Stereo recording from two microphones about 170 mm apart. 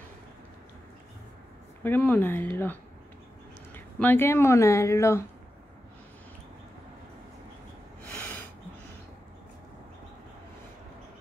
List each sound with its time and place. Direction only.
1.8 s speech: 10° left (ahead or behind)